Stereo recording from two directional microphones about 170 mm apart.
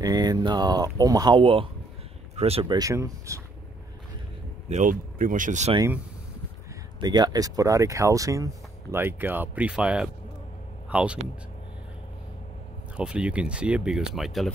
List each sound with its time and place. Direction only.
0.0 s speech: 20° right (ahead or behind)
4.6 s speech: 45° right (ahead or behind)
7.0 s speech: 25° right (ahead or behind); by 11.1 s 5° right (ahead or behind)
12.9 s speech: 5° right (ahead or behind)